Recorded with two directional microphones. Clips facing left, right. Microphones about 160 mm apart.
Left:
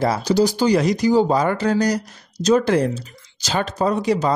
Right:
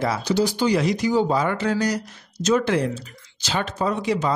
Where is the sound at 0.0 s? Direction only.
40° left (ahead or behind).